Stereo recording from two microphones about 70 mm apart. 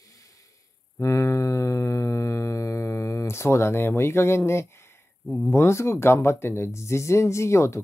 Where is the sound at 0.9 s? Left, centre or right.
Left.